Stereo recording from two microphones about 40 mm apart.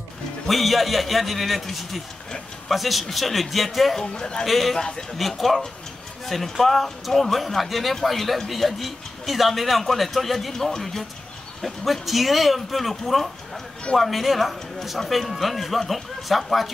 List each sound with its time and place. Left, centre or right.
0.5 s a man's voice: centre
4.0 s speech: centre
4.5 s a man's voice: centre
4.7 s speech: centre
5.1 s a man's voice: centre